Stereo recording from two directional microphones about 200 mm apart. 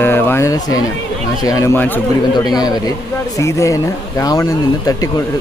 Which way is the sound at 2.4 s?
20° left (ahead or behind).